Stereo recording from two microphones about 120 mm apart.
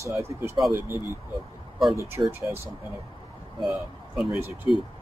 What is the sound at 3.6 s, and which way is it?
Speech, 5° right (ahead or behind).